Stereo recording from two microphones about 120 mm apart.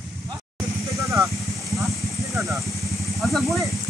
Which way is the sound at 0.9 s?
25° right (ahead or behind).